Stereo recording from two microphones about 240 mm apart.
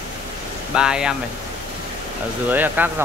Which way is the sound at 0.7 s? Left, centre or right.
Centre.